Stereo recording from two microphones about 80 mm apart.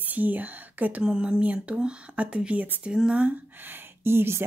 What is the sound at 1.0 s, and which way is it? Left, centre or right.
Speech, centre.